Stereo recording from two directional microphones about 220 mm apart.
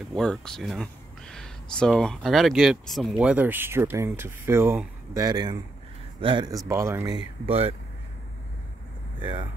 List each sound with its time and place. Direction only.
0.1 s speech: 5° left (ahead or behind)
7.4 s speech: 25° right (ahead or behind)
9.2 s speech: 20° right (ahead or behind)